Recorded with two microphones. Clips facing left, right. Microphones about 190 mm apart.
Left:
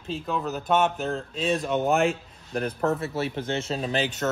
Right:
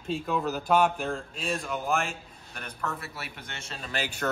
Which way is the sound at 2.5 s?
35° left (ahead or behind).